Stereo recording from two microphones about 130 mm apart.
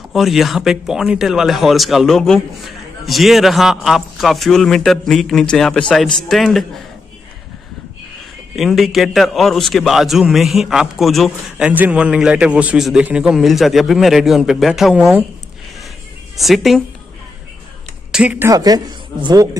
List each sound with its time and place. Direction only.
0.1 s a man's voice: centre (ahead or behind)
8.5 s a man's voice: centre (ahead or behind)
16.3 s a man's voice: centre (ahead or behind)
18.1 s speech: 10° right (ahead or behind)
18.5 s speech: 30° right (ahead or behind)